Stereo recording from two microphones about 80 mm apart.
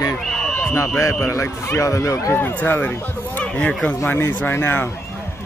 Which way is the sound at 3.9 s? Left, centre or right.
Left.